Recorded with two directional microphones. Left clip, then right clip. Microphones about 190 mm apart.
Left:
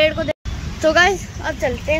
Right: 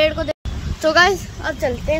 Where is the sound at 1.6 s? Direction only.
Centre (ahead or behind).